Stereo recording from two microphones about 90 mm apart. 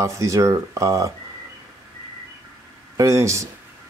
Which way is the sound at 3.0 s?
35° right (ahead or behind).